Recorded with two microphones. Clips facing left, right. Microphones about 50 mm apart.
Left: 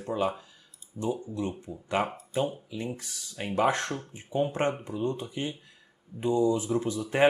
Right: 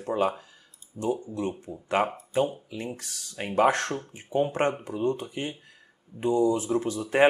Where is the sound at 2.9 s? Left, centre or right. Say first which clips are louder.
Right 1 dB; right.